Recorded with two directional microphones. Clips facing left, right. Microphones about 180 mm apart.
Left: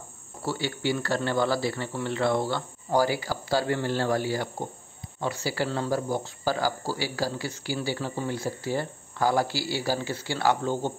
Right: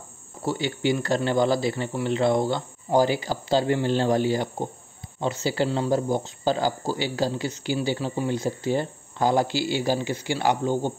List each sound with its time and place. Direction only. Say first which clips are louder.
0.4 s speech: right 4 dB; 20° right (ahead or behind)